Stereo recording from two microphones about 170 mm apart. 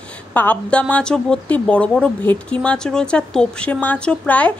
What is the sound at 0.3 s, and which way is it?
Speech, 10° left (ahead or behind).